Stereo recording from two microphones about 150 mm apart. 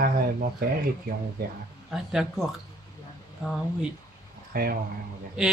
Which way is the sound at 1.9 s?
5° right (ahead or behind).